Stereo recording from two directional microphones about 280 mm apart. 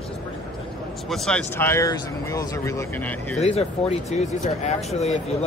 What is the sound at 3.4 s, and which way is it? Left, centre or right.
Speech, left.